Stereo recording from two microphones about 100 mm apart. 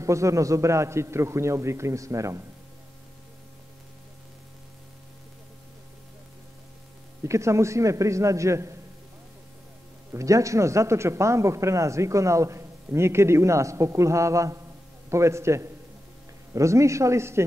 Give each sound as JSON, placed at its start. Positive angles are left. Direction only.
{"t": 0.0, "sound": "speech", "side_deg": -30}
{"t": 7.2, "sound": "speech", "side_deg": -30}
{"t": 10.1, "sound": "speech", "side_deg": -30}